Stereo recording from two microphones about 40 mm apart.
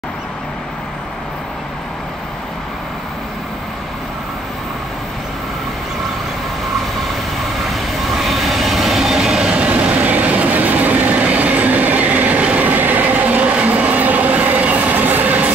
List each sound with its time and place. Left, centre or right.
7.7 s train: centre
9.5 s train: right